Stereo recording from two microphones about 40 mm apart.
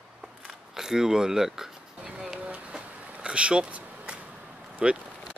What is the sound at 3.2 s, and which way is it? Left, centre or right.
Speech, right.